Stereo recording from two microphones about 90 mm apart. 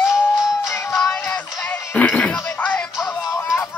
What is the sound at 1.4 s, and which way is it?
Music, 15° left (ahead or behind).